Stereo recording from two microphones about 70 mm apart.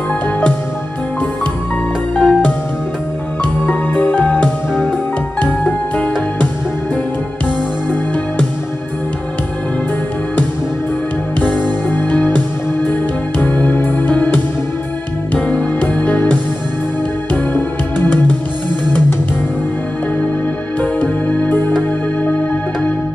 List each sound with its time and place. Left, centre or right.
2.1 s music: centre
3.6 s music: centre
11.4 s music: centre
12.1 s music: left
13.6 s organ: centre
15.3 s music: centre
17.6 s music: left
20.8 s music: centre